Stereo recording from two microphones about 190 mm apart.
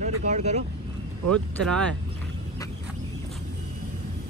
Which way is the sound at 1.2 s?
5° left (ahead or behind).